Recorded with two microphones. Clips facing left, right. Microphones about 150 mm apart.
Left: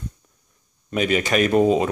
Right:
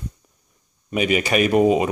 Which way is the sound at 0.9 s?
5° right (ahead or behind).